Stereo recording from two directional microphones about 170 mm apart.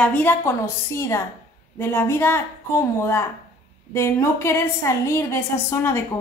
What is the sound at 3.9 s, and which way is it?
A woman's voice, 15° left (ahead or behind).